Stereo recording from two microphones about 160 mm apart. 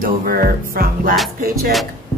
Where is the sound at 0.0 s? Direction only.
65° right (ahead or behind).